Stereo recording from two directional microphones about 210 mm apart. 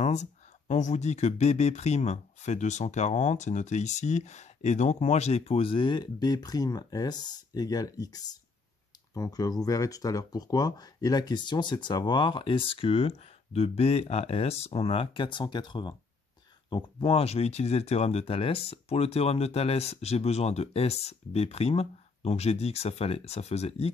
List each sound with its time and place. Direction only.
0.0 s speech: 35° left (ahead or behind)